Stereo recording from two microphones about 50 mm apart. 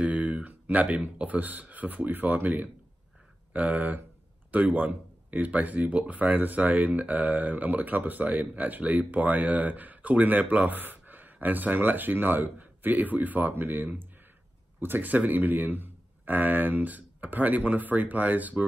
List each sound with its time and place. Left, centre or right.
0.0 s speech: right